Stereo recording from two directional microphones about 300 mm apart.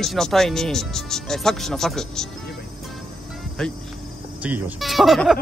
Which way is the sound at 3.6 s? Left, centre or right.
Centre.